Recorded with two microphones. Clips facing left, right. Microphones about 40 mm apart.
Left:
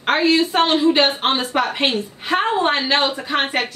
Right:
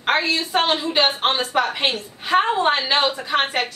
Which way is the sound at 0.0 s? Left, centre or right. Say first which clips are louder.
Left 4 dB; centre.